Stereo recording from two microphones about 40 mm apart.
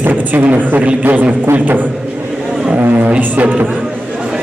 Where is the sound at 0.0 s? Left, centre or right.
Right.